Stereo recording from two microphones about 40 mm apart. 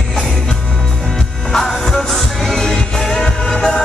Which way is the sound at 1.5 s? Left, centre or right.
Centre.